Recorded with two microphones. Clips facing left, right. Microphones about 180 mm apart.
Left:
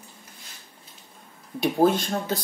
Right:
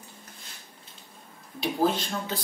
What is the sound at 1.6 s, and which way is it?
Speech, 50° left (ahead or behind).